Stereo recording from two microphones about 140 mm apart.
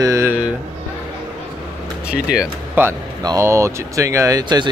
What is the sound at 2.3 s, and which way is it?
Speech, 10° right (ahead or behind).